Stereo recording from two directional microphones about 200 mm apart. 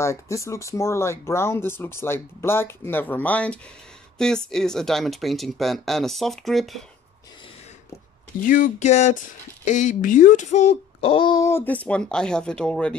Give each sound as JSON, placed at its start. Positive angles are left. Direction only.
{"t": 0.0, "sound": "speech", "side_deg": 15}
{"t": 8.4, "sound": "a sound", "side_deg": 45}
{"t": 9.7, "sound": "speech", "side_deg": 40}